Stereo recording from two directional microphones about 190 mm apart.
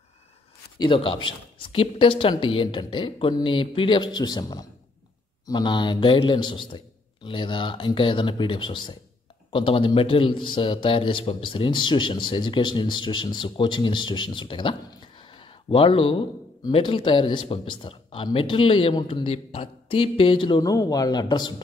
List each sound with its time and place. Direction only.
0.7 s a man's voice: 25° left (ahead or behind)